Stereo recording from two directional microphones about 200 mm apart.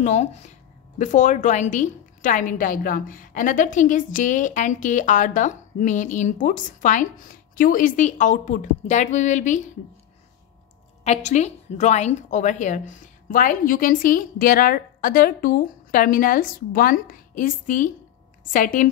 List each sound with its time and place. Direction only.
0.0 s a woman's voice: 35° left (ahead or behind)
11.1 s a woman's voice: 35° left (ahead or behind)